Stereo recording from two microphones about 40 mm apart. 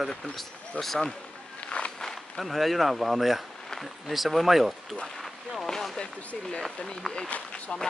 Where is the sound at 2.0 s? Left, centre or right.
Centre.